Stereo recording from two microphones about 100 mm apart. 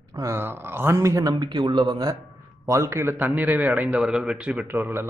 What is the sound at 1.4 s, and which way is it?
Speech, 45° right (ahead or behind).